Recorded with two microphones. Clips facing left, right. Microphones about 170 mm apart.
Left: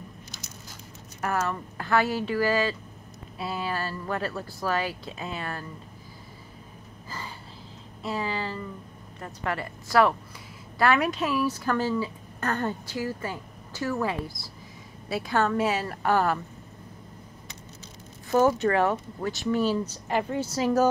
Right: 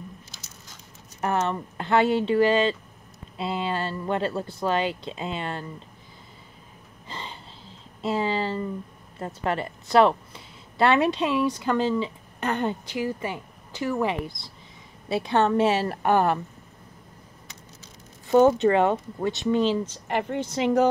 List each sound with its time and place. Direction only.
1.2 s speech: 25° right (ahead or behind)
7.1 s a sound: 25° right (ahead or behind)
8.0 s speech: 25° right (ahead or behind)
18.3 s speech: 25° right (ahead or behind)
19.9 s speech: 5° left (ahead or behind)